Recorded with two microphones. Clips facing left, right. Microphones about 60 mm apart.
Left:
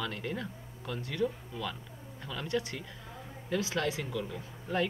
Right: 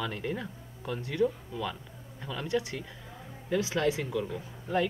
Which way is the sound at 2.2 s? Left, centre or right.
Centre.